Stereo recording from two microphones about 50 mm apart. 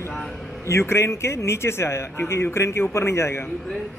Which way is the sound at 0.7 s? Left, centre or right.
Left.